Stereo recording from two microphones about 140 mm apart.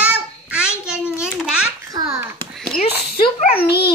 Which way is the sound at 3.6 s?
40° left (ahead or behind).